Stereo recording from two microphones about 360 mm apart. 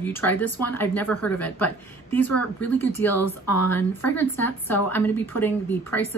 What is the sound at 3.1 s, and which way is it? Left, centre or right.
Speech, left.